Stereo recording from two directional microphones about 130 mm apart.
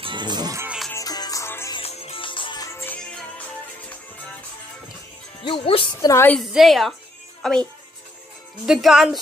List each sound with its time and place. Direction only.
0.0 s music: 35° right (ahead or behind)
0.7 s music: centre (ahead or behind)
0.9 s music: 30° left (ahead or behind)
1.8 s music: 50° left (ahead or behind)
2.6 s music: 20° left (ahead or behind)
5.4 s speech: 45° left (ahead or behind)
5.9 s a woman's voice: 20° left (ahead or behind)
6.3 s a woman's voice: centre (ahead or behind)
8.6 s a woman's voice: 5° right (ahead or behind)